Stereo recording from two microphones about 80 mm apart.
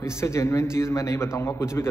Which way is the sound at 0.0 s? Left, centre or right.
Left.